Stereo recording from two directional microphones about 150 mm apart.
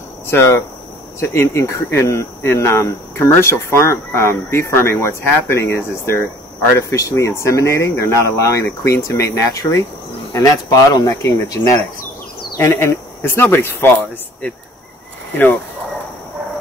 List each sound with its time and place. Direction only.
0.3 s speech: 15° left (ahead or behind)
15.3 s speech: 10° left (ahead or behind)